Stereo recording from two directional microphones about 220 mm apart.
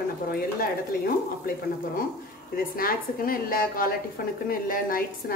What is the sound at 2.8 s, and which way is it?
A woman's voice, 40° left (ahead or behind).